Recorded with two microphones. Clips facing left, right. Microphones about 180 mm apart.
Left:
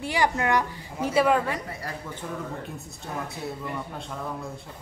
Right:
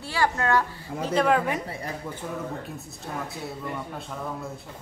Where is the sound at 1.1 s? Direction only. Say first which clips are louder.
Even; 5° left (ahead or behind).